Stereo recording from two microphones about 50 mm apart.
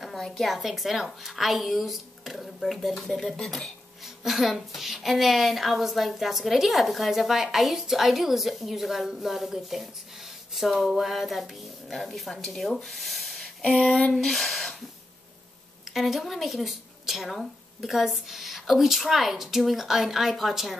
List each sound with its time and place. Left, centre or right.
0.0 s a woman's voice: centre
13.7 s a sound: centre
14.2 s a woman's voice: centre
15.9 s a woman's voice: centre